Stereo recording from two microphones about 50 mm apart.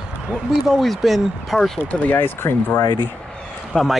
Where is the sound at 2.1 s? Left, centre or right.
Left.